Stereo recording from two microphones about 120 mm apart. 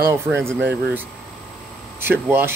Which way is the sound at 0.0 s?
20° right (ahead or behind).